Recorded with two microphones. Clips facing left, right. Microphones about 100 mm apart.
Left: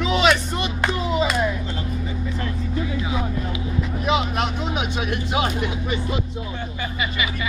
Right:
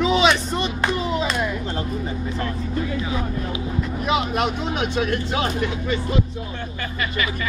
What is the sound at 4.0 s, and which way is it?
Speech, centre (ahead or behind).